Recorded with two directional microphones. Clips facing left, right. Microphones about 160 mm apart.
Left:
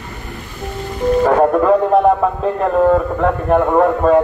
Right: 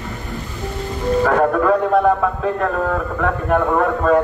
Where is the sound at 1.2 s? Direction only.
20° left (ahead or behind).